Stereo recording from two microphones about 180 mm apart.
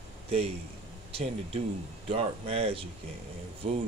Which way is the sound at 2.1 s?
30° right (ahead or behind).